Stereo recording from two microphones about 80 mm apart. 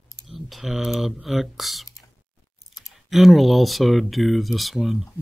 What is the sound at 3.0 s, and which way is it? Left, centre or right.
Speech, centre.